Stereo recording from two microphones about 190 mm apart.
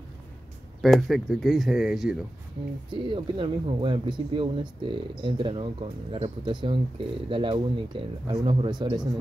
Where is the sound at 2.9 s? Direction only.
25° right (ahead or behind).